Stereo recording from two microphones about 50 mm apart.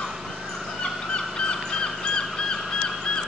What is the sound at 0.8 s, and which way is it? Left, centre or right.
Crow, centre.